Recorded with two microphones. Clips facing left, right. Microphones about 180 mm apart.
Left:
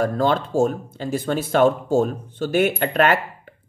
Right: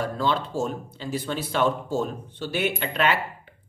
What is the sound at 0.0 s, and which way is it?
Speech, 50° left (ahead or behind).